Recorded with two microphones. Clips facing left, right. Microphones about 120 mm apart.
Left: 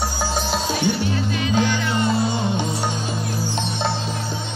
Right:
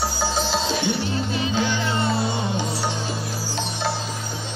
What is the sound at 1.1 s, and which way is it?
Music, 30° right (ahead or behind).